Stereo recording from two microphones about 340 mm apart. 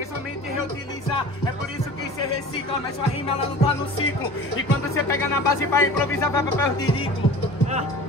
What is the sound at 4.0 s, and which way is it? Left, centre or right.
Speech, left.